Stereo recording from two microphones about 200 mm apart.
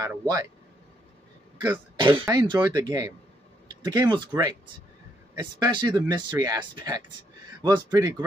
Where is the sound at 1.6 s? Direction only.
20° right (ahead or behind).